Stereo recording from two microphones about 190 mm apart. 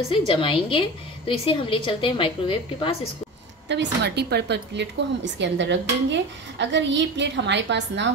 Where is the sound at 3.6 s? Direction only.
65° right (ahead or behind).